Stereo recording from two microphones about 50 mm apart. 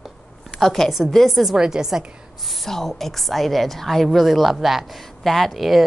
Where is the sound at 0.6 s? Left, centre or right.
Centre.